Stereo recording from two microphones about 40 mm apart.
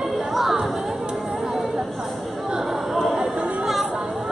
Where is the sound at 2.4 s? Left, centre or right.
Centre.